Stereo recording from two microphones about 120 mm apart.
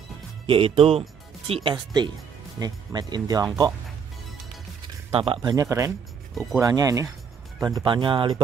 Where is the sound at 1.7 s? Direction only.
35° right (ahead or behind).